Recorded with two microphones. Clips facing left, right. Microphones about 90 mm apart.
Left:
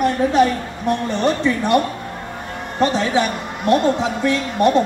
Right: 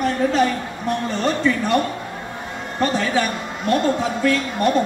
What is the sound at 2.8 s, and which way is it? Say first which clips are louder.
A man's voice: left 3 dB; 20° left (ahead or behind).